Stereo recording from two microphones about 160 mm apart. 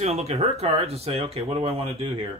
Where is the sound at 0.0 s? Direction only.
40° right (ahead or behind).